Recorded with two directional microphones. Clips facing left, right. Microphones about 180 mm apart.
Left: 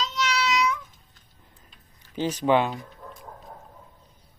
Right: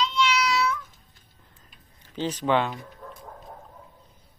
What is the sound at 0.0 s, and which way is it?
Meow, 40° left (ahead or behind).